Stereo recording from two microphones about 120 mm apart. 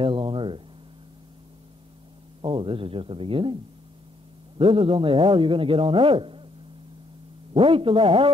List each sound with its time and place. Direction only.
0.0 s a sound: 45° right (ahead or behind)
2.4 s speech: 45° right (ahead or behind)
4.6 s speech: 50° right (ahead or behind)
7.5 s speech: 50° right (ahead or behind)